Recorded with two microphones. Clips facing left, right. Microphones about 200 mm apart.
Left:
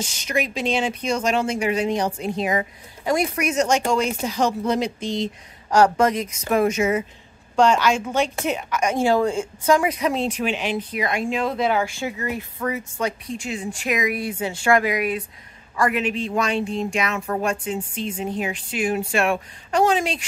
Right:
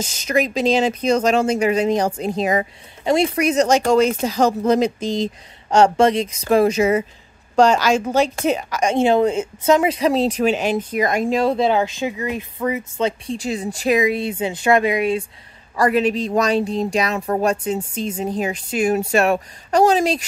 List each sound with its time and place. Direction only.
0.7 s speech: 40° right (ahead or behind)
3.0 s speech: 25° right (ahead or behind); by 4.9 s 40° right (ahead or behind)
5.7 s speech: 25° right (ahead or behind)
8.9 s speech: 20° right (ahead or behind); by 20.2 s 40° right (ahead or behind)